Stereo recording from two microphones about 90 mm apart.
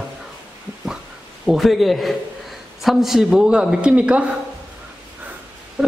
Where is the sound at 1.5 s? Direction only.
Centre (ahead or behind).